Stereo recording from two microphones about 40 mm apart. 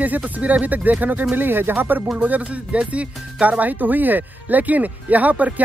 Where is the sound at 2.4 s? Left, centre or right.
Right.